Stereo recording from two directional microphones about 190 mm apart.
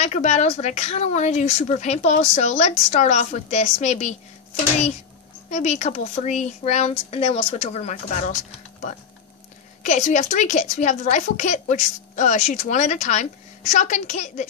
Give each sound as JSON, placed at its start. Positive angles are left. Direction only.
{"t": 0.0, "sound": "a woman's voice", "side_deg": 35}
{"t": 5.5, "sound": "a woman's voice", "side_deg": 35}
{"t": 9.8, "sound": "a woman's voice", "side_deg": 40}